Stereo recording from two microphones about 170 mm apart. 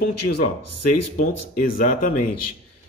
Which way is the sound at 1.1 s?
55° left (ahead or behind).